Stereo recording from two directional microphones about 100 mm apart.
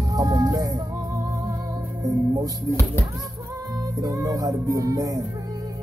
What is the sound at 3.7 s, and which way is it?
Speech, 35° right (ahead or behind).